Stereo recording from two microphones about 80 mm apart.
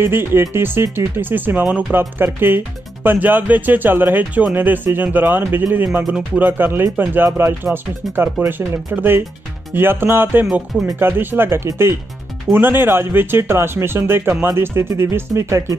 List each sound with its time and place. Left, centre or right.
0.0 s speech: right